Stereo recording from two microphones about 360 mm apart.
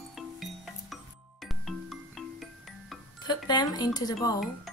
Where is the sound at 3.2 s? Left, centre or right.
Centre.